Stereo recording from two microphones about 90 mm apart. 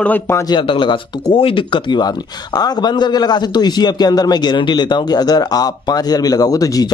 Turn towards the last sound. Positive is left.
turn(degrees=40)  # may be behind; listen again after turning